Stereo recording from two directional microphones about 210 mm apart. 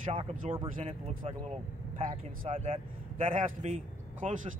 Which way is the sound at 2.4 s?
25° right (ahead or behind).